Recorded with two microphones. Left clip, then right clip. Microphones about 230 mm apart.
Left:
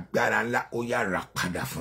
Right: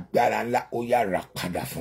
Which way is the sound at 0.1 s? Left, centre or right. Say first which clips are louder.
Right 2 dB; centre.